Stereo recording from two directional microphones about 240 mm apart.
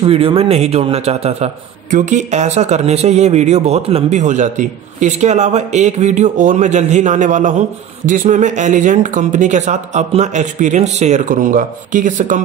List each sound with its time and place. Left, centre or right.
0.0 s a man's voice: right